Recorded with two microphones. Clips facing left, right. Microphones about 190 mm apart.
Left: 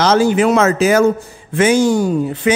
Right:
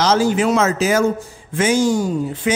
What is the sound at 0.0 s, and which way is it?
Speech, 60° left (ahead or behind).